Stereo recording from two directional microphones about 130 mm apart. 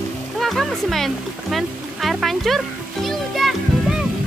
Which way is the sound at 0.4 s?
Centre (ahead or behind).